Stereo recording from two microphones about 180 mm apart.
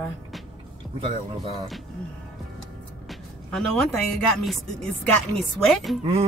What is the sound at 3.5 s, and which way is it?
Speech, 5° left (ahead or behind).